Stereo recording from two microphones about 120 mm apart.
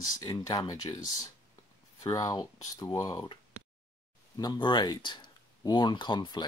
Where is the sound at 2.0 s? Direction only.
30° left (ahead or behind).